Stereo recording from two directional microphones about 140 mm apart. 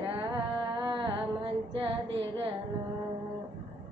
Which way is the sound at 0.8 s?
35° right (ahead or behind).